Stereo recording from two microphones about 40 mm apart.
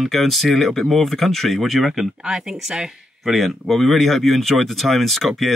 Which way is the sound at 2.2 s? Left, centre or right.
Centre.